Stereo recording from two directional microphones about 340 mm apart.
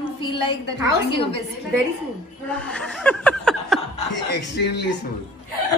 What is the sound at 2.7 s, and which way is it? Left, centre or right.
Chuckle, centre.